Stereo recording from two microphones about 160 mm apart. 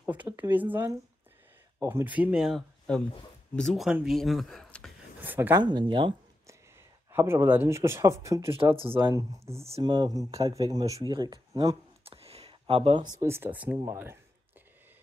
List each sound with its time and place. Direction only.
0.0 s speech: 10° right (ahead or behind)
5.2 s speech: 10° right (ahead or behind)
5.6 s speech: 30° right (ahead or behind)
7.1 s speech: 15° right (ahead or behind)
8.7 s speech: 35° right (ahead or behind)
9.1 s speech: 20° right (ahead or behind)